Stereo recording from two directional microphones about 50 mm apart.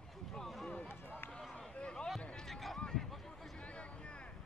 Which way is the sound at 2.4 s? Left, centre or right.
Centre.